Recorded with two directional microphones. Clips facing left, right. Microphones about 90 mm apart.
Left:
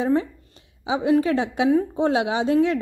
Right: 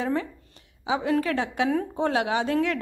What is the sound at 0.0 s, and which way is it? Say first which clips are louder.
A woman's voice: left 6 dB; 25° left (ahead or behind).